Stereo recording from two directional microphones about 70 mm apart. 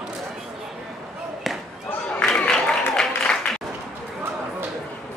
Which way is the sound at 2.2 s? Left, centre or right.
Centre.